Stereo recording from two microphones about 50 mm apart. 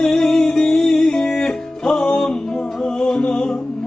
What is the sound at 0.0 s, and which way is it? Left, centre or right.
Music, centre.